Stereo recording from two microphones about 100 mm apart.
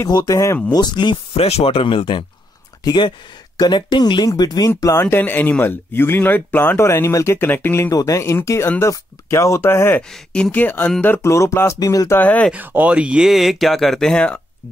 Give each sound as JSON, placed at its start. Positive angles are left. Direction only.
{"t": 0.1, "sound": "speech", "side_deg": 40}
{"t": 0.7, "sound": "speech", "side_deg": 45}
{"t": 1.3, "sound": "speech", "side_deg": 75}
{"t": 2.8, "sound": "speech", "side_deg": 45}
{"t": 4.3, "sound": "speech", "side_deg": 35}
{"t": 5.0, "sound": "speech", "side_deg": 20}
{"t": 7.9, "sound": "speech", "side_deg": 30}
{"t": 10.1, "sound": "speech", "side_deg": 10}
{"t": 11.3, "sound": "speech", "side_deg": 30}
{"t": 12.2, "sound": "speech", "side_deg": 15}
{"t": 12.5, "sound": "speech", "side_deg": -15}